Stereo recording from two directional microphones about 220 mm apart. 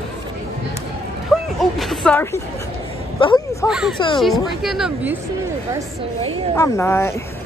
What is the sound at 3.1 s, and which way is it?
Speech, 20° left (ahead or behind).